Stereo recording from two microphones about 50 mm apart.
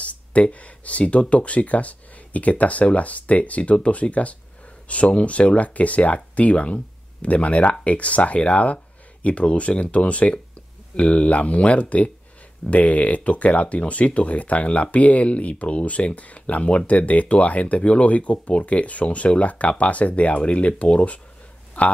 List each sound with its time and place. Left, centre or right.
0.0 s speech: left